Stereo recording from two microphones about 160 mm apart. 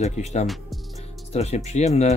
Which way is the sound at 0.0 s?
45° left (ahead or behind).